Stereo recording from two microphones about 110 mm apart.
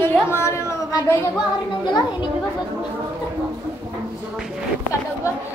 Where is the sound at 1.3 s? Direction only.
40° left (ahead or behind).